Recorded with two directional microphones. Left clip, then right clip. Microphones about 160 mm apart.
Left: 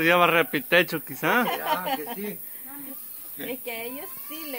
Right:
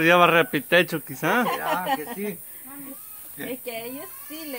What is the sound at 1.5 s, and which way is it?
Speech, 20° right (ahead or behind).